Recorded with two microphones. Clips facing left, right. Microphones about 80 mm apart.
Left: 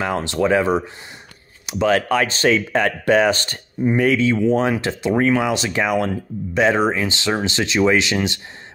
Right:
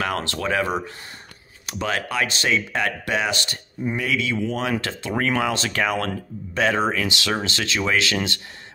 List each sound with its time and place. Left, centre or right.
0.0 s speech: left
1.9 s speech: left